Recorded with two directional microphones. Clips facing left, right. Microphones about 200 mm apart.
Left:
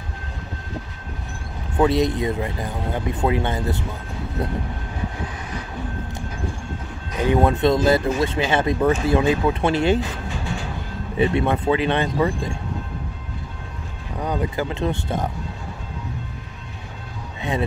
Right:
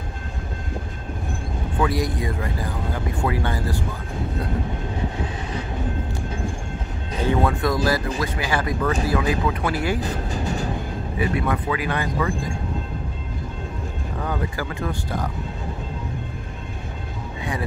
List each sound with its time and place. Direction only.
1.8 s speech: 25° left (ahead or behind)
7.2 s speech: 20° left (ahead or behind)
10.0 s vehicle: 40° right (ahead or behind)
11.1 s speech: 25° left (ahead or behind)
14.2 s speech: 20° left (ahead or behind)
17.4 s a sound: 25° left (ahead or behind)